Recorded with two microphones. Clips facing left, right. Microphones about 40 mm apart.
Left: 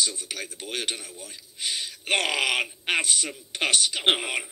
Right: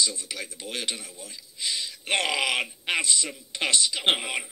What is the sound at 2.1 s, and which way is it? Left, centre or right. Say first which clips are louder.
Speech: left 1 dB; left.